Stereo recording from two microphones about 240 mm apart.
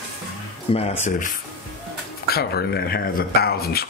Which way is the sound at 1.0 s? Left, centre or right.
Left.